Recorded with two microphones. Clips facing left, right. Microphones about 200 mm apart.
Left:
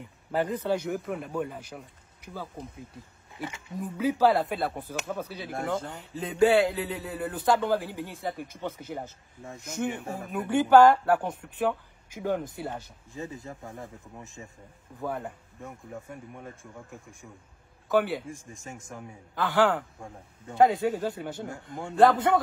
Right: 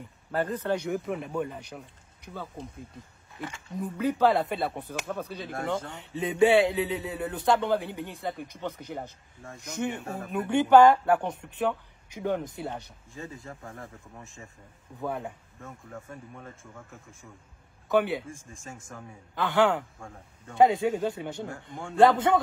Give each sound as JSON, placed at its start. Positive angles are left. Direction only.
{"t": 0.3, "sound": "speech", "side_deg": 10}
{"t": 0.7, "sound": "a man's voice", "side_deg": 0}
{"t": 3.3, "sound": "speech", "side_deg": 20}
{"t": 3.7, "sound": "a man's voice", "side_deg": 5}
{"t": 13.1, "sound": "speech", "side_deg": 20}
{"t": 15.0, "sound": "a man's voice", "side_deg": 0}
{"t": 15.6, "sound": "speech", "side_deg": 15}
{"t": 17.8, "sound": "a man's voice", "side_deg": 0}
{"t": 18.5, "sound": "speech", "side_deg": 15}
{"t": 19.3, "sound": "a man's voice", "side_deg": 0}
{"t": 20.0, "sound": "speech", "side_deg": 15}
{"t": 20.5, "sound": "a man's voice", "side_deg": 0}